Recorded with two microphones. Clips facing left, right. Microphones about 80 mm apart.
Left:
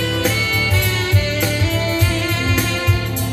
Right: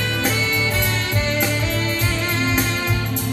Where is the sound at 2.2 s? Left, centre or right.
Right.